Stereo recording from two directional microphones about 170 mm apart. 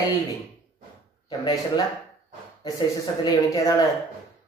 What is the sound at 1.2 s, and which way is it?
Speech, 25° left (ahead or behind).